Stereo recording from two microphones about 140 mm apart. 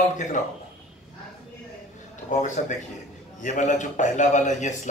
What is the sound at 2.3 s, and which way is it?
A man's voice, 60° left (ahead or behind).